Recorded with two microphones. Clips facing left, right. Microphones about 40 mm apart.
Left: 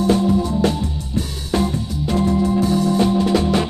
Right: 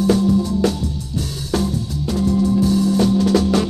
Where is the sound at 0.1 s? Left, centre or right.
Left.